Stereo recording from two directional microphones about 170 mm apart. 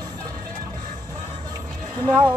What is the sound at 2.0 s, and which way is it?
Speech, 20° right (ahead or behind).